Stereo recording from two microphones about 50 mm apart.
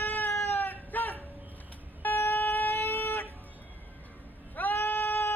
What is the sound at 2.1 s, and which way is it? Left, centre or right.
Vehicle, left.